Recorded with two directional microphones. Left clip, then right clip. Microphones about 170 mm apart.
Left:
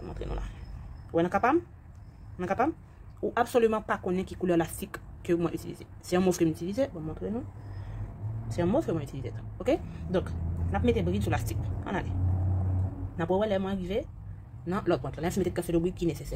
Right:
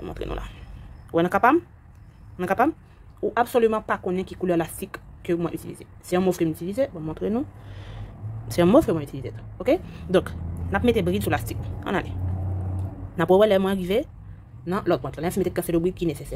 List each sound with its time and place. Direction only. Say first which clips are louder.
0.0 s speech: right 7 dB; 40° right (ahead or behind)
1.1 s speech: right 6 dB; 30° right (ahead or behind)
3.2 s speech: right 5 dB; 15° right (ahead or behind)
7.1 s speech: right 9 dB; 40° right (ahead or behind)
8.5 s speech: right 10 dB; 50° right (ahead or behind)
8.9 s speech: right 6 dB; 20° right (ahead or behind)
9.9 s speech: right 9 dB; 40° right (ahead or behind)
11.3 s a woman's voice: right 6 dB; 25° right (ahead or behind)
13.1 s speech: right 10 dB; 45° right (ahead or behind)
14.6 s speech: right 5 dB; 25° right (ahead or behind)